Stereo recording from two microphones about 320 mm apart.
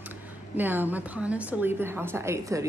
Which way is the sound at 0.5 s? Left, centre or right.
Centre.